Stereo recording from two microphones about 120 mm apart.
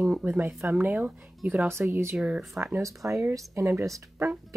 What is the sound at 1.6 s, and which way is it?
Speech, 20° right (ahead or behind).